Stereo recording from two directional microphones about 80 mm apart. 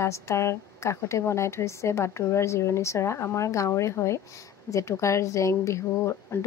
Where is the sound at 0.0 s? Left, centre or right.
Left.